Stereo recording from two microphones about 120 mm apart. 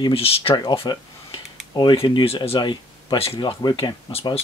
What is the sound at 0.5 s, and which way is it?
Speech, 40° left (ahead or behind).